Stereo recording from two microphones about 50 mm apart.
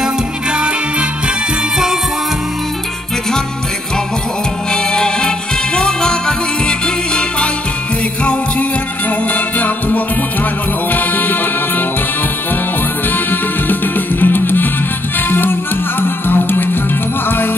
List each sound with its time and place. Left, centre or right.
0.0 s music: centre
4.9 s music: centre
9.3 s music: left
13.1 s music: left